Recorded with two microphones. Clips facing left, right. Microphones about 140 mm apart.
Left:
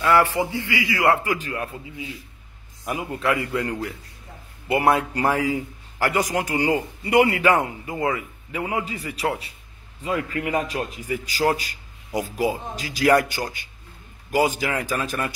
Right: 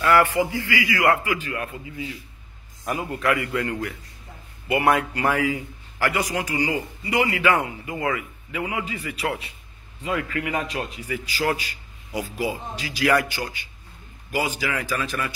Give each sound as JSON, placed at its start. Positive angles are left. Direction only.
{"t": 0.4, "sound": "a man's voice", "side_deg": 25}
{"t": 1.2, "sound": "a man's voice", "side_deg": 40}
{"t": 1.5, "sound": "a man's voice", "side_deg": 30}
{"t": 2.8, "sound": "a man's voice", "side_deg": 15}
{"t": 3.2, "sound": "a man's voice", "side_deg": 25}
{"t": 3.6, "sound": "a man's voice", "side_deg": 15}
{"t": 4.6, "sound": "a man's voice", "side_deg": 30}
{"t": 7.4, "sound": "a man's voice", "side_deg": 40}
{"t": 7.9, "sound": "a man's voice", "side_deg": 30}